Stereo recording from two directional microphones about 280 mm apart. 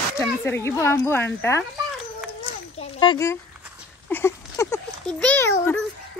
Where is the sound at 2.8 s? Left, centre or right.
Centre.